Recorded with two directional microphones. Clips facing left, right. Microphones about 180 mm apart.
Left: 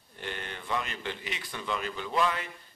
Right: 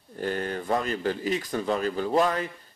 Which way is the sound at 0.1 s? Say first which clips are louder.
Right 10 dB; 40° right (ahead or behind).